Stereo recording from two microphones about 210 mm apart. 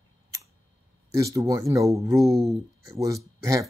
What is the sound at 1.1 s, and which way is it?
Speech, 15° right (ahead or behind).